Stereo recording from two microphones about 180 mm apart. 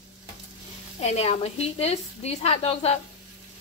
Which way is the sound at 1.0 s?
35° left (ahead or behind).